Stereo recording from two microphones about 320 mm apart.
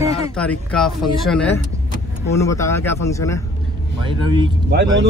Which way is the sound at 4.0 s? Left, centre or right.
Centre.